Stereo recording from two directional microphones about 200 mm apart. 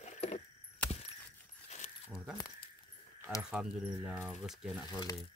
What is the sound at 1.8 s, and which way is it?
Keys jangling, 30° left (ahead or behind).